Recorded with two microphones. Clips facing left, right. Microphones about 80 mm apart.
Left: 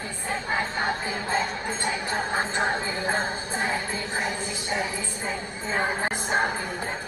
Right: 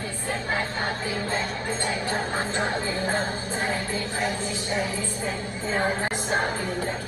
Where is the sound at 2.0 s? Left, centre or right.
Left.